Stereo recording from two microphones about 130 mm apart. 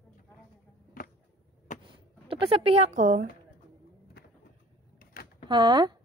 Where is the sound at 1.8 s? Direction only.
40° right (ahead or behind); by 3.2 s 70° right (ahead or behind).